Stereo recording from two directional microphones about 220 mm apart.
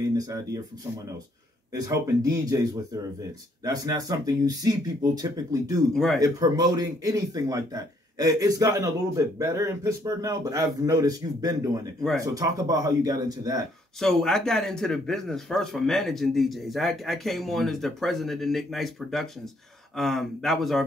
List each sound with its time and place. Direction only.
0.1 s speech: 15° right (ahead or behind)
1.7 s speech: 15° right (ahead or behind)
13.9 s speech: centre (ahead or behind)